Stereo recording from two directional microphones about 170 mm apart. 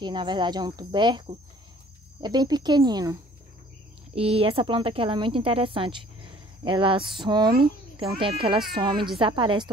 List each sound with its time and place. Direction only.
0.0 s speech: 25° right (ahead or behind)
4.1 s a child's voice: 35° right (ahead or behind)